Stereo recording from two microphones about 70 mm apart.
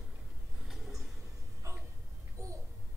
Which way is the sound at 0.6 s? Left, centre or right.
Centre.